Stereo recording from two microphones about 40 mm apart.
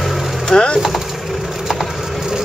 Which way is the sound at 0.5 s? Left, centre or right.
Centre.